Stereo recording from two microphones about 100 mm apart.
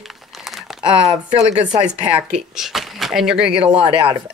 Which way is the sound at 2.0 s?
10° right (ahead or behind).